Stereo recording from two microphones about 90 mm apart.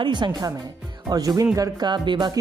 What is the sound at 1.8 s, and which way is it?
Speech, 55° right (ahead or behind).